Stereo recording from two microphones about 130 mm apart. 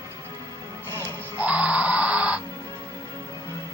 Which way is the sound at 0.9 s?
20° right (ahead or behind).